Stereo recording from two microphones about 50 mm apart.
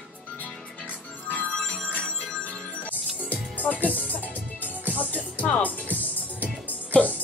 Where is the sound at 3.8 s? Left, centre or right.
Left.